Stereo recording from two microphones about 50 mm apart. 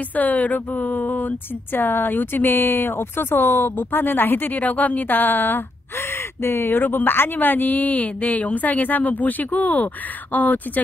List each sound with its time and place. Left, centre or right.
0.1 s speech: left